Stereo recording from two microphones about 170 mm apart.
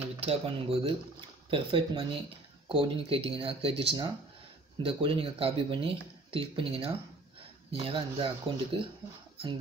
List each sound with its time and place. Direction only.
0.2 s speech: 35° right (ahead or behind)